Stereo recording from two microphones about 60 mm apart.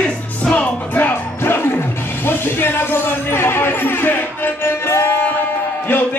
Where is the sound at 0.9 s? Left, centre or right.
Left.